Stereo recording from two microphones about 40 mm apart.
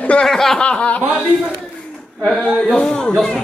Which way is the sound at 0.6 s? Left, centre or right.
Left.